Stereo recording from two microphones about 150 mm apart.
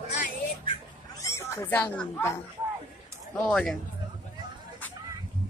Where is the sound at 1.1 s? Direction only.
20° left (ahead or behind).